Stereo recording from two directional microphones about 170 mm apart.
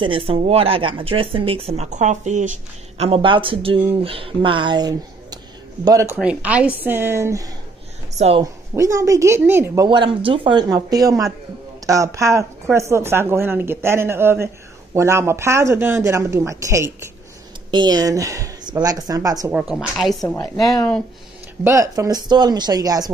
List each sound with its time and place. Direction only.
0.0 s speech: 30° right (ahead or behind)
6.2 s speech: 10° right (ahead or behind)
9.8 s speech: 30° right (ahead or behind)
19.5 s a woman's voice: 5° right (ahead or behind)
20.3 s a woman's voice: 20° left (ahead or behind)
21.6 s speech: 20° right (ahead or behind)